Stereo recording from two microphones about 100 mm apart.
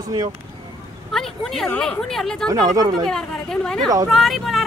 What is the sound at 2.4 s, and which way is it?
Speech, 35° right (ahead or behind).